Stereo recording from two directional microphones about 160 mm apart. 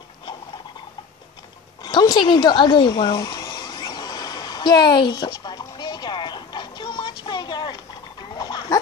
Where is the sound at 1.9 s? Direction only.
30° left (ahead or behind).